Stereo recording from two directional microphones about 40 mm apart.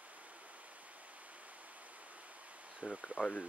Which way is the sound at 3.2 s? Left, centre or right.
Left.